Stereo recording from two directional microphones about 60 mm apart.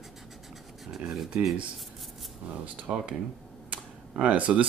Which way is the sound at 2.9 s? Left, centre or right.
Centre.